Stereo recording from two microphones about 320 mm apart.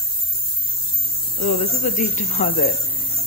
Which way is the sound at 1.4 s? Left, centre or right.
Left.